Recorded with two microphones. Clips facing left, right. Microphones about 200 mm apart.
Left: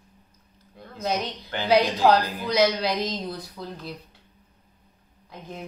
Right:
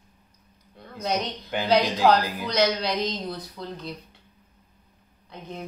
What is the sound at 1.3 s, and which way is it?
Speech, 15° right (ahead or behind).